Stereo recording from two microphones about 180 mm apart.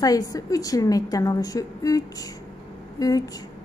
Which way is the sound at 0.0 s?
20° left (ahead or behind).